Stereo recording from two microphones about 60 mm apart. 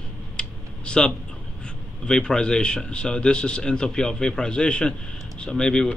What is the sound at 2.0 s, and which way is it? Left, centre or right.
A man's voice, centre.